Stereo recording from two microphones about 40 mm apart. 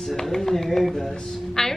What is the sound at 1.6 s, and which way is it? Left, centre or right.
Speech, centre.